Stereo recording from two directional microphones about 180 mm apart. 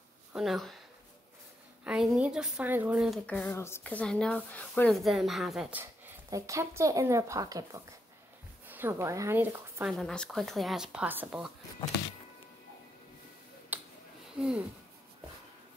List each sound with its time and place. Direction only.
0.3 s speech: centre (ahead or behind)
1.9 s speech: 5° right (ahead or behind)
3.3 s speech: 10° left (ahead or behind); by 5.9 s 5° right (ahead or behind)
6.3 s a woman's voice: 15° right (ahead or behind)
9.9 s speech: 5° left (ahead or behind)
13.7 s finger snapping: 10° right (ahead or behind)
14.4 s speech: 10° right (ahead or behind)